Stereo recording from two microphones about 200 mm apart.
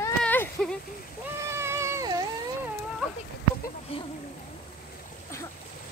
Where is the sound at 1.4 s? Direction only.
15° right (ahead or behind).